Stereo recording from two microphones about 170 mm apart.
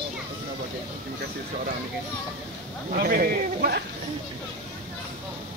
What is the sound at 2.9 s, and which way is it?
Speech, 60° right (ahead or behind).